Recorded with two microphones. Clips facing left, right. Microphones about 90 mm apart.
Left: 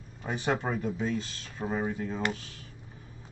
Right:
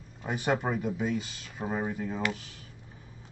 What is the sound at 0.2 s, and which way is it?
Speech, 5° right (ahead or behind).